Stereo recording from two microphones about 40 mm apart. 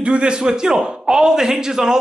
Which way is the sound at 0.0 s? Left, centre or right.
Right.